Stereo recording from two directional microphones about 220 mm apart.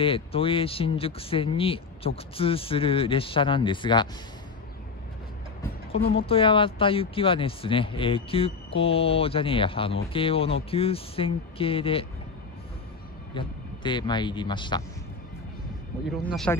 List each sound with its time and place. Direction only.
0.0 s speech: 25° left (ahead or behind)
6.1 s speech: 25° left (ahead or behind)
13.3 s speech: 20° left (ahead or behind)
16.5 s a man's voice: 10° left (ahead or behind)